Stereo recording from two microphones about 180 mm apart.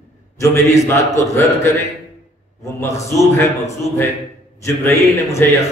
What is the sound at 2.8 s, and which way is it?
Speech, 15° left (ahead or behind).